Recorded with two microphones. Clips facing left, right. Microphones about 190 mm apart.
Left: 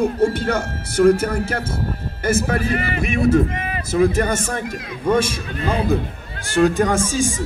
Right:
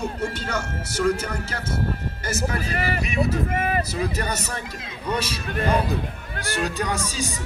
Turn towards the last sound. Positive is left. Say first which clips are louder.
# left 8 dB
turn(degrees=50)  # may be behind; listen again after turning